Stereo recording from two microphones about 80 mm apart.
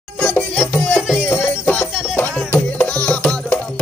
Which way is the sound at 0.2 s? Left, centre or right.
Centre.